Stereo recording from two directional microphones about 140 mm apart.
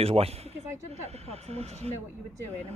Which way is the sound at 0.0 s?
45° right (ahead or behind).